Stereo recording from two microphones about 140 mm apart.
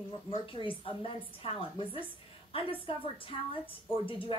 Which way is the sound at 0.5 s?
40° left (ahead or behind).